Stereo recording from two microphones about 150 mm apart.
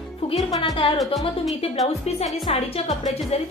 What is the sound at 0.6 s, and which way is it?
Speech, 35° left (ahead or behind).